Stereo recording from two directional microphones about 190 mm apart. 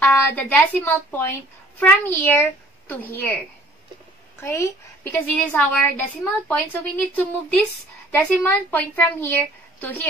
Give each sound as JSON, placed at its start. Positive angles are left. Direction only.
{"t": 0.0, "sound": "a woman's voice", "side_deg": 10}
{"t": 4.4, "sound": "a woman's voice", "side_deg": 15}